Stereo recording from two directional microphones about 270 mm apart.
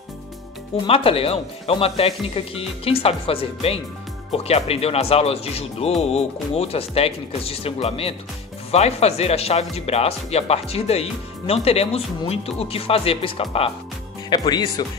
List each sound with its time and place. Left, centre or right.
0.8 s speech: left